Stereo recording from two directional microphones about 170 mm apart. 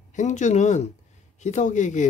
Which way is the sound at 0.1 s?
45° left (ahead or behind).